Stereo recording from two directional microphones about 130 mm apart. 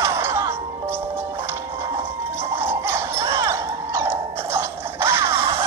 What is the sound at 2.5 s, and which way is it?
Music, 20° right (ahead or behind).